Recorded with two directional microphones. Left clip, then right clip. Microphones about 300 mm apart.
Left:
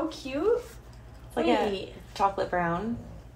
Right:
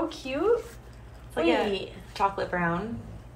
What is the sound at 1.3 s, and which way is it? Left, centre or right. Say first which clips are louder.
A woman's voice: right 1 dB; left.